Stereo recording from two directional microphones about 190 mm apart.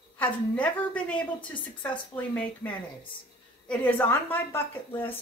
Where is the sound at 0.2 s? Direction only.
5° left (ahead or behind).